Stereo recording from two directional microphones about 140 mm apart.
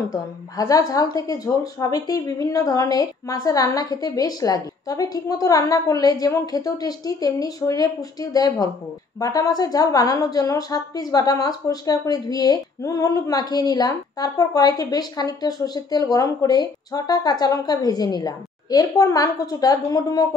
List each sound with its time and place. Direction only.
0.1 s a woman's voice: 25° left (ahead or behind)